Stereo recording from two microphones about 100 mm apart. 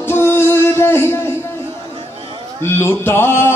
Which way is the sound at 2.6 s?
25° left (ahead or behind).